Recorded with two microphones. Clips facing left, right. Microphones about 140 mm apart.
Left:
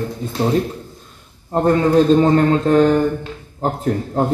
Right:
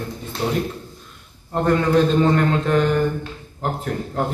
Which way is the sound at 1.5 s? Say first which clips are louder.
Left 3 dB; 35° left (ahead or behind).